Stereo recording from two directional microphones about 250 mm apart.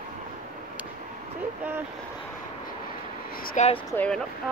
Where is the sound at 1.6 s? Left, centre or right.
Centre.